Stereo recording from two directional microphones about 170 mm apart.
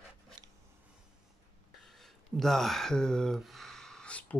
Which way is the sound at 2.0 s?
Centre (ahead or behind).